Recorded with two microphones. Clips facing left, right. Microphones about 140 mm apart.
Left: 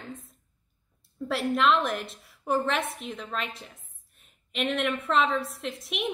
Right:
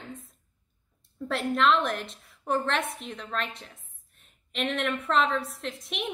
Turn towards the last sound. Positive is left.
turn(degrees=0)  # may be behind; listen again after turning